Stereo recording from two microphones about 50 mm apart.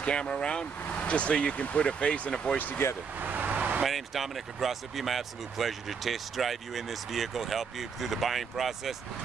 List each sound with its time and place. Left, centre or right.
0.0 s speech: centre
3.2 s vehicle: right
3.8 s speech: centre